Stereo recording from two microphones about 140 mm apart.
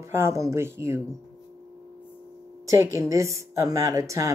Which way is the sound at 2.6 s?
20° right (ahead or behind).